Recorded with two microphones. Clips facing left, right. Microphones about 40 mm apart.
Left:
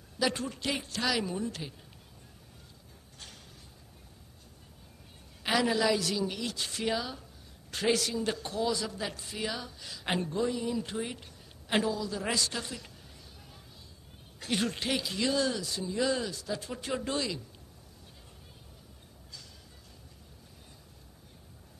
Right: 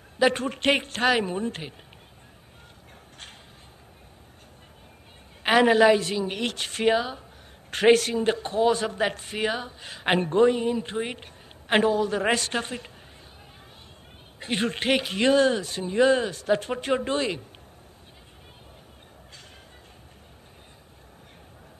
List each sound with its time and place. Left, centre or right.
0.2 s a man's voice: right
5.4 s a woman's voice: right
6.3 s a man's voice: right
7.7 s a man's voice: right
14.4 s a man's voice: right